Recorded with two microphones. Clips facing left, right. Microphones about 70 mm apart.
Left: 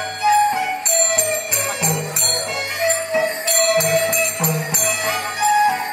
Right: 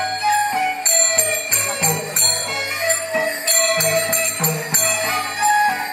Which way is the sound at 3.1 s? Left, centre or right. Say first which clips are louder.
Left 2 dB; right.